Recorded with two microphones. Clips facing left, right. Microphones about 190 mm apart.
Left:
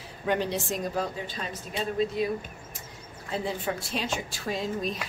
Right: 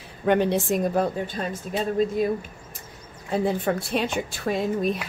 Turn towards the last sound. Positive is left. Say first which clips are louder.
# right 6 dB
turn(degrees=-60)  # may be behind; listen again after turning